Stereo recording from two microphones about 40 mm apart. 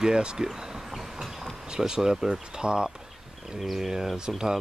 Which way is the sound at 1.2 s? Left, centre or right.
Centre.